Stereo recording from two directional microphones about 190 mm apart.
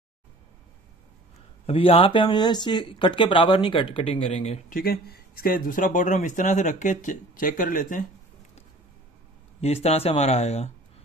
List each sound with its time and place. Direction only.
1.7 s speech: 30° left (ahead or behind)
4.6 s speech: 50° left (ahead or behind)
9.6 s speech: 35° left (ahead or behind)